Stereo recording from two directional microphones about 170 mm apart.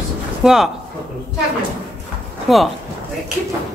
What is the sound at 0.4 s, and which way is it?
Speech, 5° right (ahead or behind).